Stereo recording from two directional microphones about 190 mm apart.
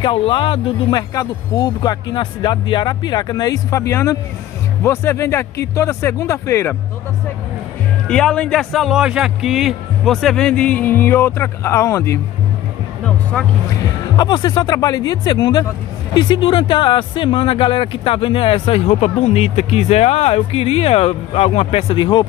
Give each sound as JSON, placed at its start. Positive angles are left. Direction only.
{"t": 0.0, "sound": "speech", "side_deg": 25}
{"t": 8.1, "sound": "speech", "side_deg": 5}
{"t": 14.1, "sound": "speech", "side_deg": 20}